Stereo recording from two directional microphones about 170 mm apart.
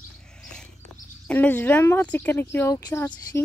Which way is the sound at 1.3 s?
10° left (ahead or behind).